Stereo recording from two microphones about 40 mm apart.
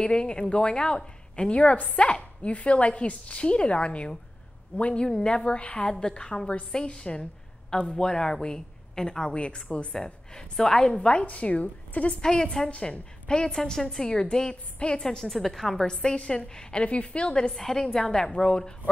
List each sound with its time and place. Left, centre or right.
0.0 s a woman's voice: left
5.0 s a woman's voice: left
9.3 s a woman's voice: left
9.9 s a woman's voice: centre
11.2 s speech: left
12.2 s a woman's voice: centre
12.6 s a woman's voice: left; by 15.9 s centre
15.9 s a woman's voice: left
17.6 s a woman's voice: centre